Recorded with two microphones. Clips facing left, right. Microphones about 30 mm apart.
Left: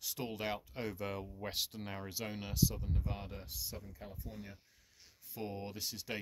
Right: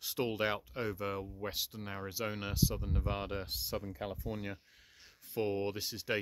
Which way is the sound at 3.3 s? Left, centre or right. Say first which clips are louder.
Right 8 dB; right.